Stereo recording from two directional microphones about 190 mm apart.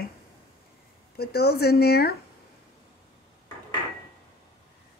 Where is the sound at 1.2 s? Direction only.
55° left (ahead or behind).